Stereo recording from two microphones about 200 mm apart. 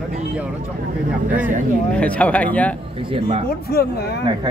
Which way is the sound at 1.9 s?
5° left (ahead or behind).